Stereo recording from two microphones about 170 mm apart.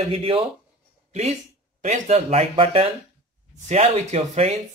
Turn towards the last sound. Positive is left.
turn(degrees=-40)  # may be behind; listen again after turning